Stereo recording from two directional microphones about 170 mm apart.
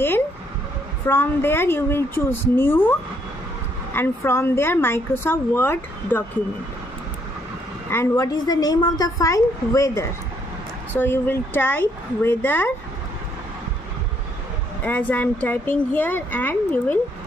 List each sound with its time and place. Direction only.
1.0 s a woman's voice: 15° left (ahead or behind)
7.9 s a woman's voice: 20° left (ahead or behind)
14.8 s a woman's voice: 10° left (ahead or behind)